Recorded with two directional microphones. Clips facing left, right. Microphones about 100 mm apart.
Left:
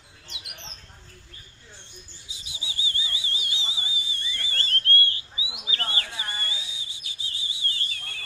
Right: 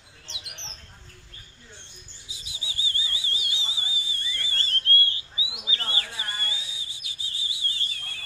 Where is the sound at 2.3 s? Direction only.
25° left (ahead or behind).